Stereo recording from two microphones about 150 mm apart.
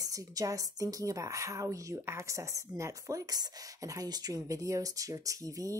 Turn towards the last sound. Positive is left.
turn(degrees=-20)  # may be behind; listen again after turning